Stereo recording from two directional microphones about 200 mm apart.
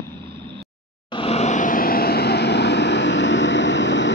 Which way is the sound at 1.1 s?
30° left (ahead or behind).